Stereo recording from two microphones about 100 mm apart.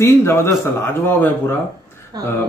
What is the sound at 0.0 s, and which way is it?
Speech, 25° left (ahead or behind).